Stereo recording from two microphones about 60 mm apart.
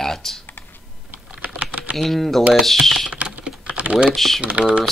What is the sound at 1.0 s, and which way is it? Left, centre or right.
Typing, right.